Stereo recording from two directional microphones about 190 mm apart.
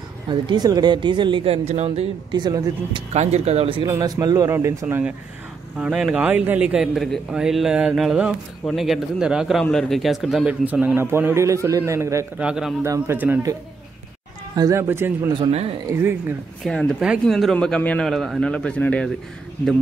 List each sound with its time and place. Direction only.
0.3 s a woman's voice: 20° right (ahead or behind)
3.1 s a man's voice: 35° right (ahead or behind); by 12.7 s 5° right (ahead or behind)
12.8 s speech: 15° right (ahead or behind)
15.3 s a woman's voice: 30° right (ahead or behind)
15.9 s speech: 15° right (ahead or behind)
16.6 s a man's voice: centre (ahead or behind)